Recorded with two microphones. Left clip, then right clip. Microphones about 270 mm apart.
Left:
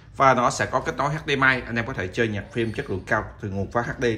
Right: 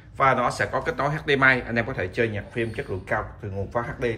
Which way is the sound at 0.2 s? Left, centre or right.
Centre.